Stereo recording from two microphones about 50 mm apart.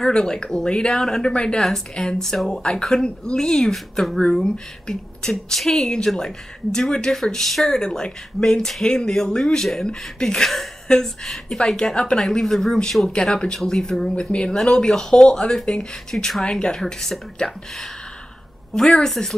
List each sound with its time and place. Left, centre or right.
0.0 s speech: centre
4.2 s speech: centre